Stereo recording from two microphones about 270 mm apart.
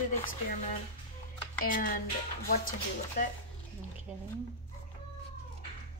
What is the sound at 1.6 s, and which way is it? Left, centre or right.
Speech, left.